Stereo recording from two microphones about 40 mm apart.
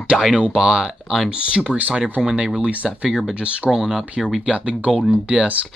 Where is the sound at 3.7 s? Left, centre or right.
Centre.